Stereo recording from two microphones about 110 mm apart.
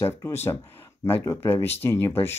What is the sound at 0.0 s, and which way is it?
Speech, 25° left (ahead or behind).